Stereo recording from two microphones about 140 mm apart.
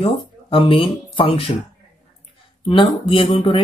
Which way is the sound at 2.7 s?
40° left (ahead or behind).